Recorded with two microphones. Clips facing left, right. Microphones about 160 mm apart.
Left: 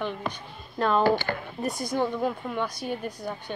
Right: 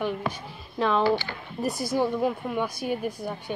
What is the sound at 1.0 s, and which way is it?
Speech, 50° left (ahead or behind).